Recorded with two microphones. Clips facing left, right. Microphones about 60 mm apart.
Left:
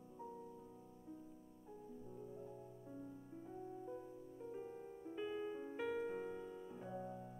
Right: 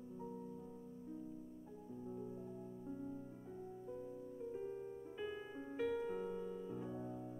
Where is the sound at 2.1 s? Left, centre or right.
Right.